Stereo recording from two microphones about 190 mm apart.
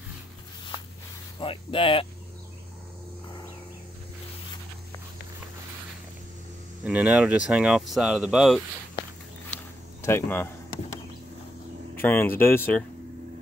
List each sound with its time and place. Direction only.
0.7 s walk: 25° left (ahead or behind)
1.4 s speech: 30° left (ahead or behind)
6.8 s speech: 5° right (ahead or behind)
10.0 s speech: 10° left (ahead or behind)
11.9 s speech: 10° left (ahead or behind)